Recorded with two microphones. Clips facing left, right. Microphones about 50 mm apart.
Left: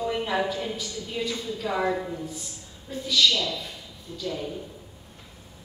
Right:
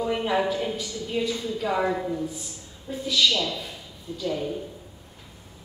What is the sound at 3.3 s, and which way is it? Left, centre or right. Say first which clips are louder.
Speech: even; right.